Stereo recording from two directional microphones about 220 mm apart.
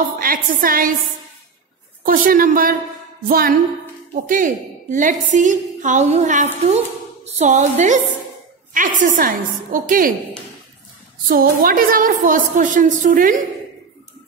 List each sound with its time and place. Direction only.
0.2 s a woman's voice: 40° right (ahead or behind)
2.0 s a woman's voice: 40° right (ahead or behind)
11.2 s a woman's voice: 40° right (ahead or behind)